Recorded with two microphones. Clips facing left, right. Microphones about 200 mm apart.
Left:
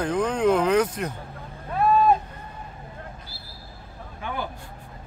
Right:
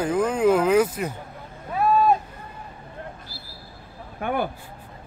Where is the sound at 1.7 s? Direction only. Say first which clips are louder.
Even; 5° right (ahead or behind).